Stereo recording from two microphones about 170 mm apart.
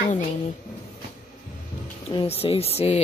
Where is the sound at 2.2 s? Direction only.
35° left (ahead or behind).